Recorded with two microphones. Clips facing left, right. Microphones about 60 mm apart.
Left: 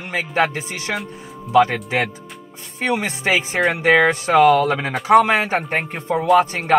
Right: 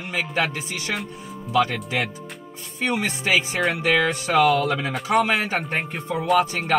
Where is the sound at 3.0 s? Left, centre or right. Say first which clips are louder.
Left 2 dB; left.